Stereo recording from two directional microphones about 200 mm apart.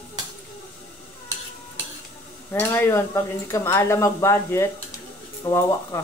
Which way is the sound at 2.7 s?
10° left (ahead or behind).